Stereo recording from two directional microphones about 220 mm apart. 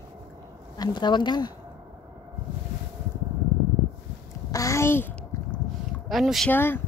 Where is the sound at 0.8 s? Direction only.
20° left (ahead or behind).